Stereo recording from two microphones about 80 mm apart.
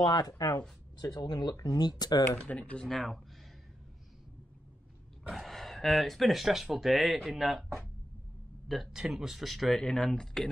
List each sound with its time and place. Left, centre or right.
0.0 s speech: left
2.2 s speech: centre
2.8 s speech: centre
5.3 s speech: centre